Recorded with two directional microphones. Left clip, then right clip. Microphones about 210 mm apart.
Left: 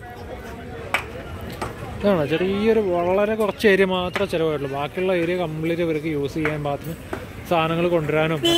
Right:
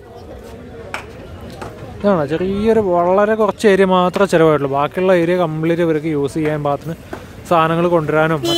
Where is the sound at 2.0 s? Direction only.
15° right (ahead or behind).